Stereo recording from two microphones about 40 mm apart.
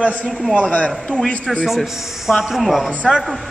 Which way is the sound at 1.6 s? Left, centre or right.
Centre.